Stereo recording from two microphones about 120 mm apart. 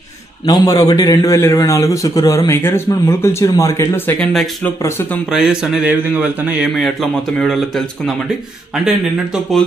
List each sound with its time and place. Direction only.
0.5 s a man's voice: 30° left (ahead or behind)
5.3 s speech: 5° right (ahead or behind)
6.8 s speech: centre (ahead or behind)